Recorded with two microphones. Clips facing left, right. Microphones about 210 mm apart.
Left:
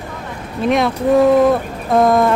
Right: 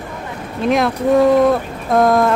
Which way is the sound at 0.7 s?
Centre (ahead or behind).